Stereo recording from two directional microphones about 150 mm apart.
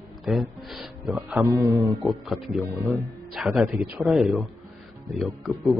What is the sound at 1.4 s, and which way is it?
Music, 20° right (ahead or behind).